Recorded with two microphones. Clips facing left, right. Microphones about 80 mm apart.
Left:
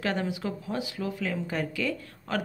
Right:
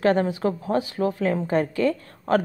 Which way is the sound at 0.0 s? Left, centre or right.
Right.